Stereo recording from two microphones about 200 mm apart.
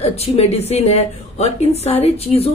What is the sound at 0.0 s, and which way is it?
A woman's voice, 30° left (ahead or behind).